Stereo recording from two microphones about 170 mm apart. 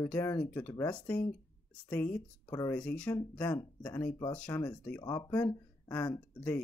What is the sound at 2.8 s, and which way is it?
Speech, 5° left (ahead or behind).